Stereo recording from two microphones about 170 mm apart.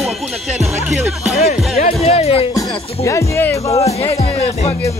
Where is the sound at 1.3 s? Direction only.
40° left (ahead or behind).